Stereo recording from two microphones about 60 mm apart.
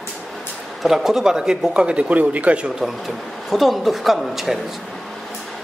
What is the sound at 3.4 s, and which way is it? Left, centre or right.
A woman's voice, centre.